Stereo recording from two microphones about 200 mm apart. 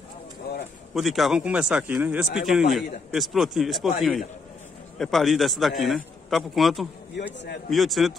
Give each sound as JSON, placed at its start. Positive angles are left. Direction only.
{"t": 0.5, "sound": "a sound", "side_deg": 50}
{"t": 0.9, "sound": "a man's voice", "side_deg": 0}
{"t": 4.9, "sound": "a man's voice", "side_deg": 0}